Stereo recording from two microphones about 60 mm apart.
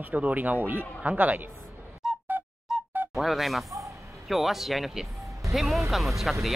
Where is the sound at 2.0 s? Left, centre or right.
Centre.